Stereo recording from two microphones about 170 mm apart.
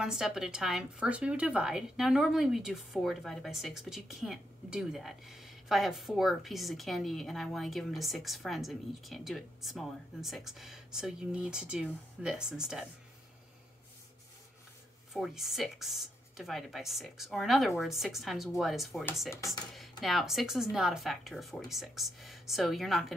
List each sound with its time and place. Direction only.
0.0 s a woman's voice: 5° right (ahead or behind)
15.1 s a woman's voice: centre (ahead or behind)
19.3 s speech: 20° left (ahead or behind)
19.7 s a woman's voice: centre (ahead or behind)